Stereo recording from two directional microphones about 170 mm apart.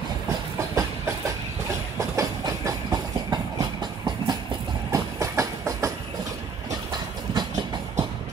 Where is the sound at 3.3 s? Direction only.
25° right (ahead or behind).